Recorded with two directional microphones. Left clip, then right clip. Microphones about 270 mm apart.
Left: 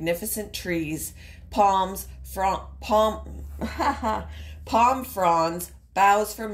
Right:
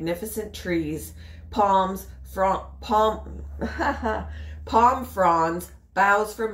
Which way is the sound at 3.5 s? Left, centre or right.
Left.